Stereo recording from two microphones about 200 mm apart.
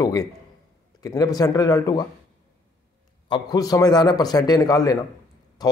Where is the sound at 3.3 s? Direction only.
20° left (ahead or behind).